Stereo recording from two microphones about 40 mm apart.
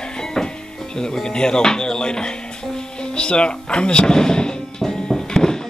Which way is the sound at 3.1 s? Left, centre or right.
Left.